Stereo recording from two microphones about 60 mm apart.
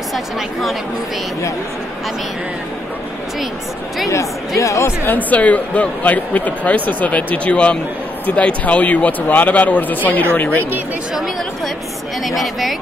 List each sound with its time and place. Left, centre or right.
0.1 s speech: centre
4.1 s speech: left
5.0 s speech: left
12.3 s speech: centre